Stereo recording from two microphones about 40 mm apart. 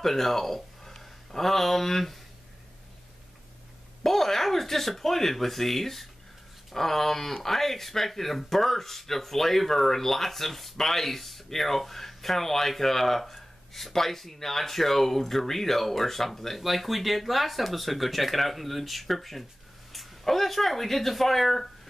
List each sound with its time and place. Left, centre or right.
0.0 s speech: centre
4.0 s speech: centre